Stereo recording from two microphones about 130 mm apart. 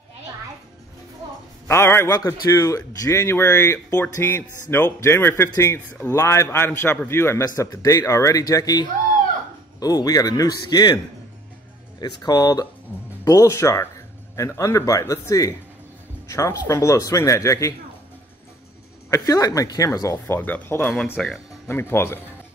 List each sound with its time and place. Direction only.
1.7 s speech: 20° left (ahead or behind)
12.0 s speech: 30° left (ahead or behind)
19.0 s speech: 25° left (ahead or behind); by 21.3 s 5° left (ahead or behind)
21.6 s speech: 20° left (ahead or behind)